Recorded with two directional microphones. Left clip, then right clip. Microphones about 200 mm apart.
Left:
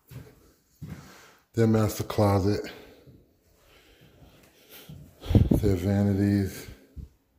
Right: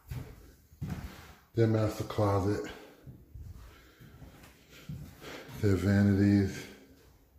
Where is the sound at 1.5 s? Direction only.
60° left (ahead or behind); by 2.7 s 40° left (ahead or behind).